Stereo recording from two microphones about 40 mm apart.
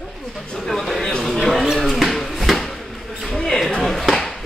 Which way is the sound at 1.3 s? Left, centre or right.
Centre.